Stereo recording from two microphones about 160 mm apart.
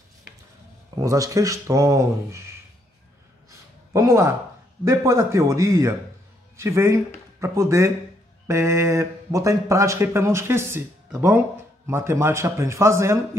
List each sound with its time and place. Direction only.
0.9 s a man's voice: 20° right (ahead or behind)
3.4 s a sound: 20° right (ahead or behind)
4.8 s a man's voice: 20° right (ahead or behind)